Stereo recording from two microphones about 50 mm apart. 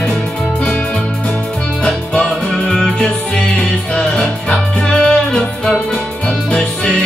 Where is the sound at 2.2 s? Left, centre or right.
Centre.